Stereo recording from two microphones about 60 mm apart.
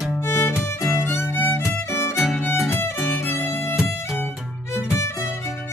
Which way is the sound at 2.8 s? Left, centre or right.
Left.